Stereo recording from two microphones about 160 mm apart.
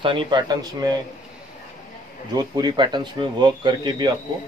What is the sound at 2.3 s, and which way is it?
Speech, 30° right (ahead or behind).